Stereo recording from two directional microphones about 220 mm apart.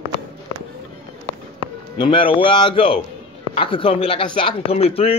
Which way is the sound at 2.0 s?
25° left (ahead or behind).